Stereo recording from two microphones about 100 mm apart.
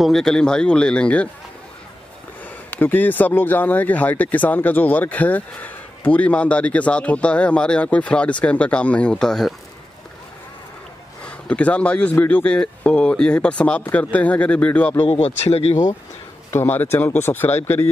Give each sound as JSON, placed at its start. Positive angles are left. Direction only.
{"t": 0.0, "sound": "speech", "side_deg": 5}
{"t": 2.7, "sound": "speech", "side_deg": 20}
{"t": 11.2, "sound": "speech", "side_deg": 10}
{"t": 15.0, "sound": "speech", "side_deg": 90}
{"t": 15.7, "sound": "speech", "side_deg": 30}
{"t": 16.5, "sound": "speech", "side_deg": 20}